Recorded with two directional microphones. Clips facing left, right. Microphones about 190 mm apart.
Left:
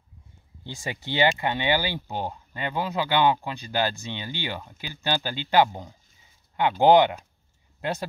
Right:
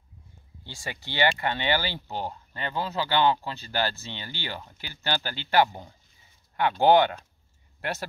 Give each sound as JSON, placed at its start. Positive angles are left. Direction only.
{"t": 0.7, "sound": "speech", "side_deg": 20}